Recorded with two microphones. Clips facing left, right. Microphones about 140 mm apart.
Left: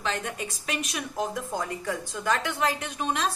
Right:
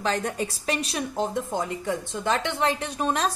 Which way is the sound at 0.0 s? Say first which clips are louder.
Right 5 dB; 35° right (ahead or behind).